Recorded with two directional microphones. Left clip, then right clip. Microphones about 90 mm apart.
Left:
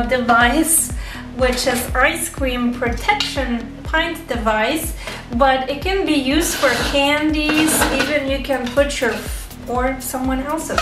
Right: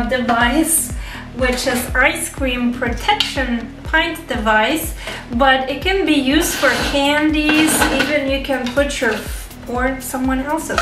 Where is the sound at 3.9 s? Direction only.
5° left (ahead or behind).